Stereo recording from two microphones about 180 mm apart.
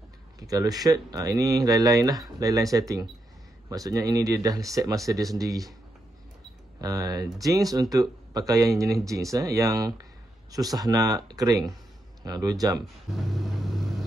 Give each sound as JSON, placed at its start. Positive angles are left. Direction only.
{"t": 0.4, "sound": "speech", "side_deg": -20}
{"t": 6.8, "sound": "speech", "side_deg": -20}
{"t": 12.8, "sound": "a sound", "side_deg": 0}